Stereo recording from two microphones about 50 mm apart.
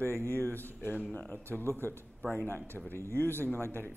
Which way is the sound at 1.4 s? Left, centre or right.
Right.